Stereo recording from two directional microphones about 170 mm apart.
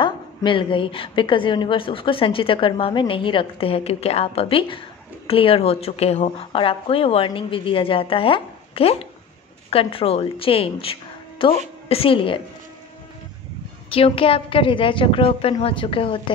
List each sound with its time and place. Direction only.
0.0 s a woman's voice: 30° left (ahead or behind)
13.8 s a woman's voice: 35° left (ahead or behind)